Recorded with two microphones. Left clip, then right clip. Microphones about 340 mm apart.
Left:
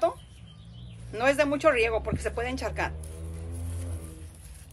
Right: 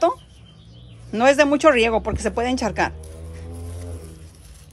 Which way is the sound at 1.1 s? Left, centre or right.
Right.